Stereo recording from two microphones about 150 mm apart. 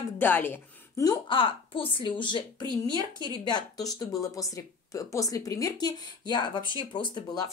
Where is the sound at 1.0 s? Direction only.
35° left (ahead or behind).